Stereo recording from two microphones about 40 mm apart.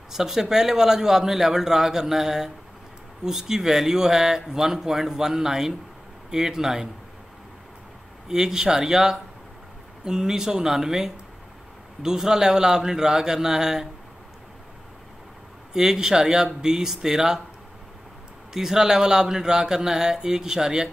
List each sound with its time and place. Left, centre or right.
0.1 s speech: centre
8.3 s speech: centre
15.7 s speech: centre
18.5 s speech: centre